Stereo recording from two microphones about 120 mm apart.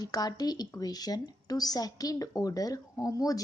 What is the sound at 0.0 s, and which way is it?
A woman's voice, 35° left (ahead or behind).